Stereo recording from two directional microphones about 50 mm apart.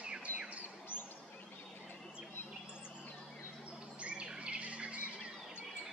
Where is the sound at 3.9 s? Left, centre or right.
Right.